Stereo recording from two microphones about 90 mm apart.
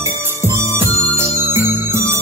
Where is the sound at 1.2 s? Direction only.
30° right (ahead or behind).